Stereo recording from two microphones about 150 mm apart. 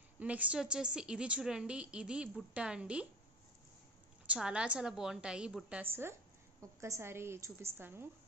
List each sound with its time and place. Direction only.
0.2 s a woman's voice: 10° right (ahead or behind)
4.3 s a woman's voice: 5° right (ahead or behind)